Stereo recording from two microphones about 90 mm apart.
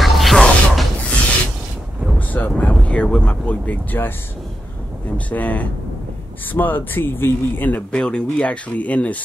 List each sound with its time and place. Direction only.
0.0 s music: centre (ahead or behind)
2.1 s speech: 15° left (ahead or behind)
5.1 s speech: 15° left (ahead or behind)